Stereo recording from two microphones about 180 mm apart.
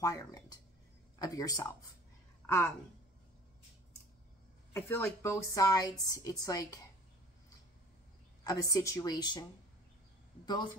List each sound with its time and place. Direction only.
0.0 s a woman's voice: 20° left (ahead or behind)
4.7 s a woman's voice: 15° left (ahead or behind)
8.5 s a woman's voice: 20° left (ahead or behind)